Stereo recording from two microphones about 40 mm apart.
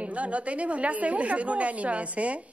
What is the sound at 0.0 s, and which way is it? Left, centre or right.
A woman's voice, right.